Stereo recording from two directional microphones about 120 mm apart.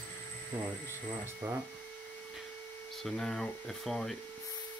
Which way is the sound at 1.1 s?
20° right (ahead or behind).